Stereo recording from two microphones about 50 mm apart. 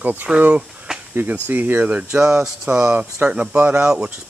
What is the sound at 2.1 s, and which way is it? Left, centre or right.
Speech, centre.